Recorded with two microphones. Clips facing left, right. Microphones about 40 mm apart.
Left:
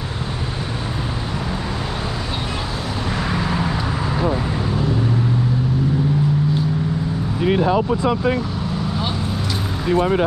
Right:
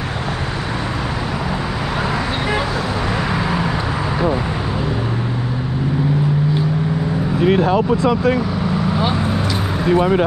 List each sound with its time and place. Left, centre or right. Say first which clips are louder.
7.4 s vehicle: right 2 dB; centre
8.9 s vehicle: right 5 dB; right
9.8 s speech: right 3 dB; centre